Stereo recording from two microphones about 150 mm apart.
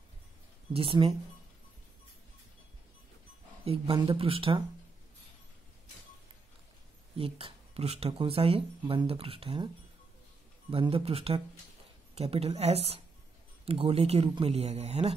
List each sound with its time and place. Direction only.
0.7 s speech: 40° right (ahead or behind)
3.6 s speech: 40° right (ahead or behind)
7.2 s speech: 40° right (ahead or behind)
10.7 s a man's voice: 35° right (ahead or behind)